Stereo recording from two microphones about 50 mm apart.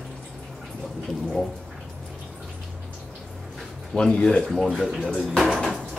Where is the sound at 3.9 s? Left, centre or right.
Centre.